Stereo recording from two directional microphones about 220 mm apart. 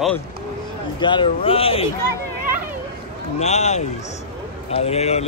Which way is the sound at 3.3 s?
30° left (ahead or behind).